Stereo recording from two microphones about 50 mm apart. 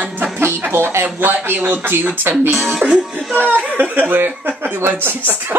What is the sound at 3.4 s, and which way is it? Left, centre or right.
Speech, right.